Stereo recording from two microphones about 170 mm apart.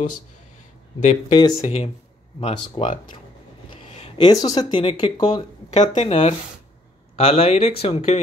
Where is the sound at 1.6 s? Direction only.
45° left (ahead or behind).